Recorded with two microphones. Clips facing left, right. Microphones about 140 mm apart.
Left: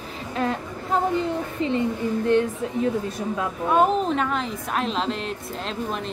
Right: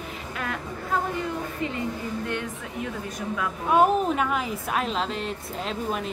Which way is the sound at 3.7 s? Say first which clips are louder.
Even; 10° right (ahead or behind).